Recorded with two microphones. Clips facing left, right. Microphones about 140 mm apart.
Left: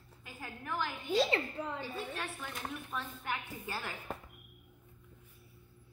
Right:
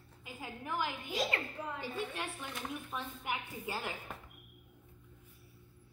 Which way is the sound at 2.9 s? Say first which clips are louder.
Left 1 dB; 15° right (ahead or behind).